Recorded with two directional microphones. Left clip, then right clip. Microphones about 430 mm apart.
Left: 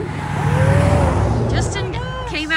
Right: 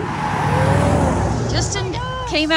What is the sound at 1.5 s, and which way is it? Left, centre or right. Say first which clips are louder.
Music: right 1 dB; centre.